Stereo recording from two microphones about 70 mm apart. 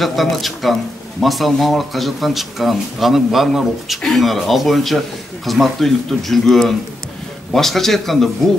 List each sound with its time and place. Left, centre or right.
0.0 s speech: centre